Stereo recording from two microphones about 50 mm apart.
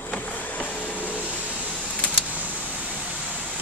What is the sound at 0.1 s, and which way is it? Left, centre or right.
Vehicle, left.